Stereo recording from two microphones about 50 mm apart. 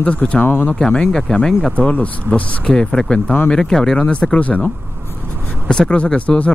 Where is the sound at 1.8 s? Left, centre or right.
Left; by 4.0 s centre.